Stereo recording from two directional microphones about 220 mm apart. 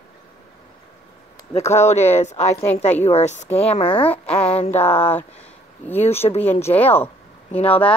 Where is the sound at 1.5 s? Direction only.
30° left (ahead or behind).